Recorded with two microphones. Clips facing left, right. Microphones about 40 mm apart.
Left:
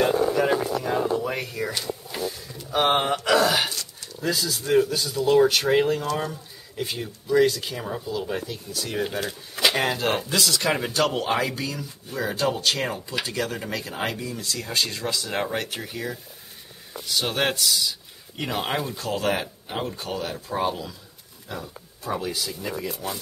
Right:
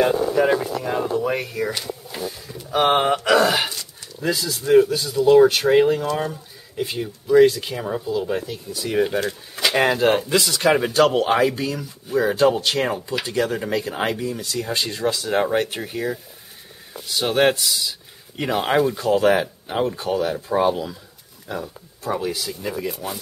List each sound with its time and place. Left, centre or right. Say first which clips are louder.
0.0 s speech: right 3 dB; centre
9.2 s a sound: right 1 dB; centre
9.8 s speech: right 6 dB; centre